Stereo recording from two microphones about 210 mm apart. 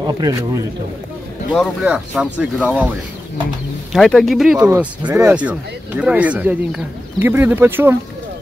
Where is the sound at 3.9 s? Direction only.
Centre (ahead or behind).